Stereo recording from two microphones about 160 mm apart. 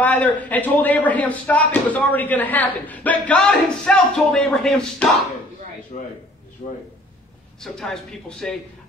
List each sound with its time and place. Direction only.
0.0 s speech: 10° left (ahead or behind)
5.9 s a man's voice: 45° left (ahead or behind)
7.6 s speech: 5° left (ahead or behind)